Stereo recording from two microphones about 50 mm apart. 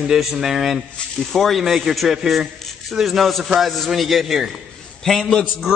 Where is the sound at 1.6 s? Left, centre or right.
Centre.